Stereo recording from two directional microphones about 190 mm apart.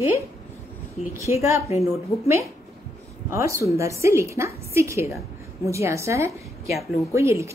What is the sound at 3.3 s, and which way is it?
A woman's voice, 15° right (ahead or behind).